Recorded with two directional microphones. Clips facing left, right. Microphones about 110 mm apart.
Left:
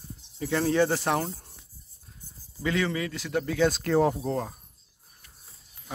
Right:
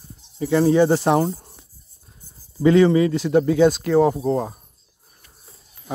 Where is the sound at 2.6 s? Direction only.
30° right (ahead or behind); by 4.6 s 10° right (ahead or behind).